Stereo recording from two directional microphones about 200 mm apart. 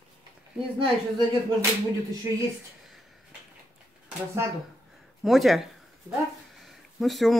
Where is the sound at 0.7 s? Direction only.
20° right (ahead or behind).